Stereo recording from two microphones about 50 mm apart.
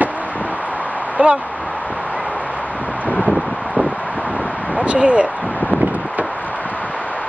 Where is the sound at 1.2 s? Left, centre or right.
Right.